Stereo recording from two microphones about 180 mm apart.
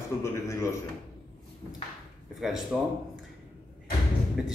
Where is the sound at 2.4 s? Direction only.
Centre (ahead or behind).